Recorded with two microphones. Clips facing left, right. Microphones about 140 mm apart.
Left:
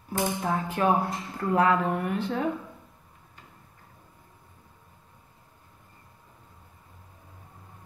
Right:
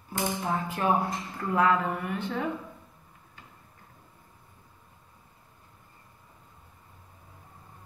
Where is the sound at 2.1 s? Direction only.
40° left (ahead or behind).